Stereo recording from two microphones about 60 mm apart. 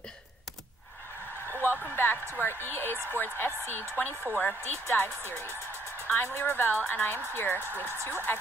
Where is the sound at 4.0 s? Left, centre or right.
Left.